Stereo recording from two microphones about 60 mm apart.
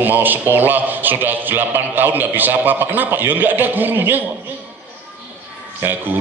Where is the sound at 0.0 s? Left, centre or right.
Right.